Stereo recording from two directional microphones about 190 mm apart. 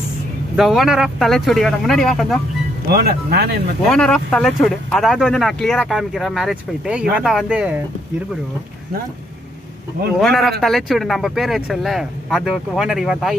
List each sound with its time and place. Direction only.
0.6 s speech: centre (ahead or behind)
2.9 s speech: 55° right (ahead or behind)
3.9 s speech: 5° left (ahead or behind)
10.2 s speech: centre (ahead or behind)